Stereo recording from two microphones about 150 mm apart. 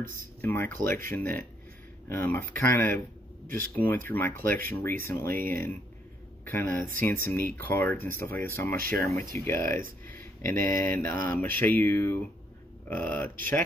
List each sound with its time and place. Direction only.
0.4 s speech: 15° left (ahead or behind)
8.7 s speech: 70° right (ahead or behind)
9.3 s speech: 15° left (ahead or behind)